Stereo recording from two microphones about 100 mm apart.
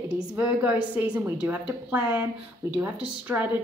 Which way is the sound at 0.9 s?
15° right (ahead or behind).